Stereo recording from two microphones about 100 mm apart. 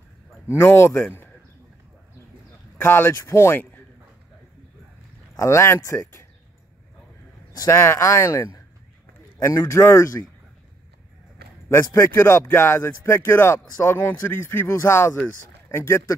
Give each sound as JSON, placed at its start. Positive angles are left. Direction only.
{"t": 0.5, "sound": "speech", "side_deg": 25}
{"t": 2.8, "sound": "speech", "side_deg": 20}
{"t": 5.3, "sound": "speech", "side_deg": 30}
{"t": 7.5, "sound": "speech", "side_deg": 30}
{"t": 11.7, "sound": "speech", "side_deg": 30}